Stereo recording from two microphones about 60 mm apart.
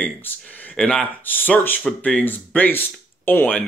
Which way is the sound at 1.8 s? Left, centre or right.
Left.